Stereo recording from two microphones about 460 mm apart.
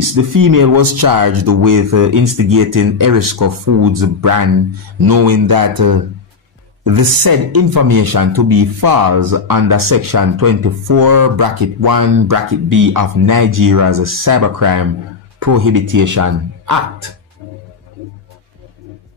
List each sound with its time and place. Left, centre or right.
0.0 s speech: right